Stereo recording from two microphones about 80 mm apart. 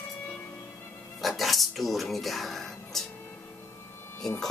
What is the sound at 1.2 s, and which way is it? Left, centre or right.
Music, centre.